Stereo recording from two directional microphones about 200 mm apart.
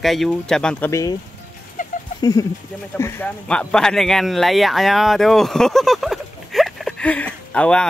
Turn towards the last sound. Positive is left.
turn(degrees=5)  # may be behind; listen again after turning